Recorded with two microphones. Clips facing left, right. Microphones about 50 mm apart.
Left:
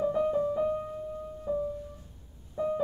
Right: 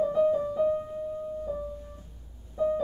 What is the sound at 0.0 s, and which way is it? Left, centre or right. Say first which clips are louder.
Music: right 4 dB; centre.